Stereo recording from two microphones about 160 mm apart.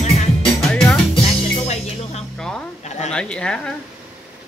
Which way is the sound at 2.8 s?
45° left (ahead or behind).